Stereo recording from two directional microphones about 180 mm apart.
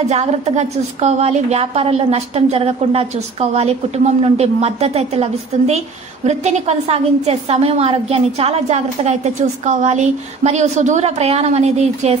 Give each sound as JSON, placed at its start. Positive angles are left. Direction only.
{"t": 0.1, "sound": "a woman's voice", "side_deg": -35}